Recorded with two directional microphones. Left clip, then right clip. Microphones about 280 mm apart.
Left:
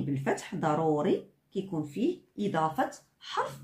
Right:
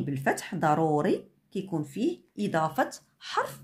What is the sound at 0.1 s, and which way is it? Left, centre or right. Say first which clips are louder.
Speech: right 3 dB; right.